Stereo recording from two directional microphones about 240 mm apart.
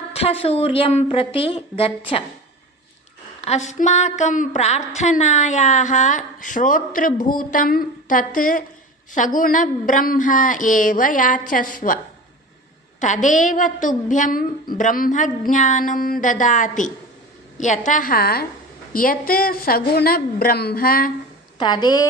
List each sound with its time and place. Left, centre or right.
0.1 s a woman's voice: left
3.3 s a woman's voice: left
13.0 s a woman's voice: left
21.5 s a woman's voice: centre